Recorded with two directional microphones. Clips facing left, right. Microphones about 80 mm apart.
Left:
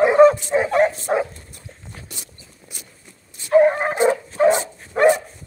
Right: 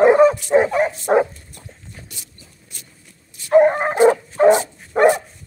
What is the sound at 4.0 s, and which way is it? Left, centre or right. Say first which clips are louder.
Dog: right 5 dB; left.